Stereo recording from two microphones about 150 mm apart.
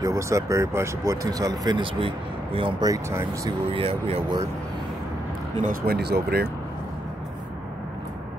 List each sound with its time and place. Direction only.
0.0 s speech: 20° right (ahead or behind); by 2.7 s 40° right (ahead or behind)
2.8 s speech: 20° right (ahead or behind)
3.7 s speech: 40° right (ahead or behind)
5.6 s speech: 70° right (ahead or behind); by 6.5 s 90° right